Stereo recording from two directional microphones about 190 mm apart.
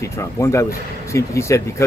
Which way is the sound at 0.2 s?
15° left (ahead or behind).